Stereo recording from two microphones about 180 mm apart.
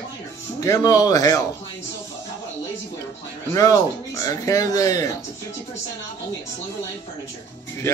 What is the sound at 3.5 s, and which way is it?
Speech, 20° left (ahead or behind).